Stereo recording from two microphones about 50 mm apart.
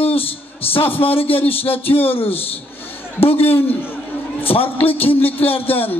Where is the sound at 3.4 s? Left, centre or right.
Left.